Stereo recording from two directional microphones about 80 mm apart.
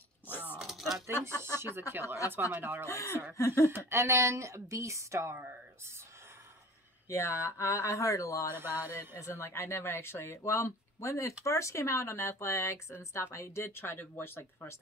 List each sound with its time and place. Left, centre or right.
0.6 s a sound: centre
1.6 s speech: right
2.9 s speech: left
3.7 s a woman's voice: right
7.1 s speech: left
8.5 s speech: right
9.2 s speech: left